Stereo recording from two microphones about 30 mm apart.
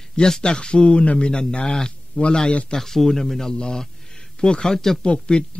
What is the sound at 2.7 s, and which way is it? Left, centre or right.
A man's voice, centre.